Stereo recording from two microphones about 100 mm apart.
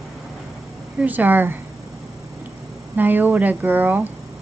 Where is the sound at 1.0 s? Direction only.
20° right (ahead or behind).